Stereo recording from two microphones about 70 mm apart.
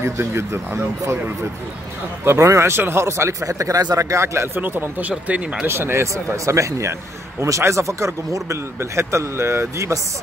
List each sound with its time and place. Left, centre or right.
0.0 s speech: right
2.2 s speech: right
4.6 s speech: right
5.7 s speech: right